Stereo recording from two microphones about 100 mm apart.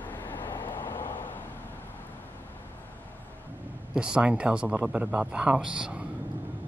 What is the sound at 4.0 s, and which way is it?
Speech, 10° right (ahead or behind).